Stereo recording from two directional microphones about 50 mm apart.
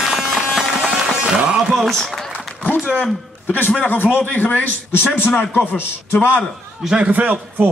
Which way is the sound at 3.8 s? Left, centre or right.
Left.